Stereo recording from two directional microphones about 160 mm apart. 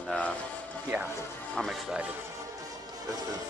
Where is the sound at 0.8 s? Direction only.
10° right (ahead or behind).